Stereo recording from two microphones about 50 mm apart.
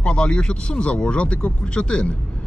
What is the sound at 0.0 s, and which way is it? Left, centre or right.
Speech, left.